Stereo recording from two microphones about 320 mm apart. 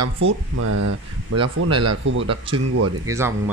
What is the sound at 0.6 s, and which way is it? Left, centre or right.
Speech, right.